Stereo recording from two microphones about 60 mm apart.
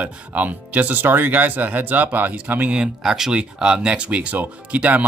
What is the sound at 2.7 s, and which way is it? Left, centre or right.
Speech, centre.